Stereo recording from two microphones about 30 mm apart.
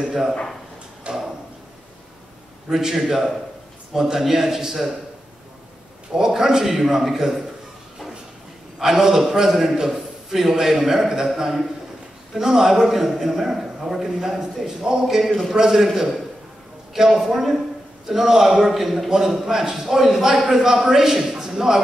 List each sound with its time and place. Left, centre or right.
0.0 s a man's voice: centre
1.1 s a sound: right
2.7 s a man's voice: centre
6.1 s a man's voice: centre
8.8 s a man's voice: centre
19.0 s a man's voice: centre